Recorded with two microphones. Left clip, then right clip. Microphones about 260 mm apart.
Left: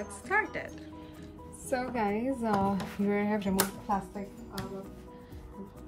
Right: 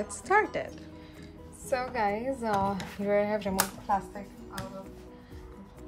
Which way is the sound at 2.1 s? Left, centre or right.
Right.